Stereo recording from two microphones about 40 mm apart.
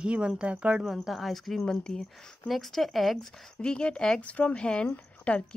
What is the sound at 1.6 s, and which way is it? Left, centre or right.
Speech, centre.